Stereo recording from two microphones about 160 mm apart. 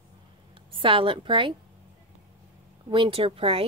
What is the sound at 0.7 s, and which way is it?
Speech, 30° right (ahead or behind).